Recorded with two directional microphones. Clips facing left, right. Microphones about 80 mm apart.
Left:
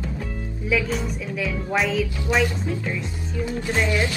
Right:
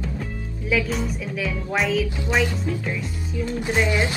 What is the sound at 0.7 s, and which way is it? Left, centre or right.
A woman's voice, centre.